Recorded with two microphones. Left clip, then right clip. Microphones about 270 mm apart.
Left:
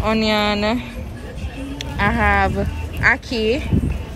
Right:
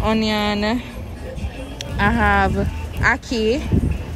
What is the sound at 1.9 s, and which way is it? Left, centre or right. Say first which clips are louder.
A woman's voice: even; centre.